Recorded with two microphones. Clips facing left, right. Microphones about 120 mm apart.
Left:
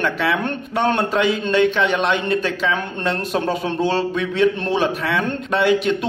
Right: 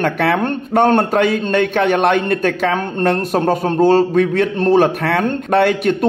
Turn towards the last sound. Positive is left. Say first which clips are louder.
# right 3 dB
turn(degrees=-50)  # may be behind; listen again after turning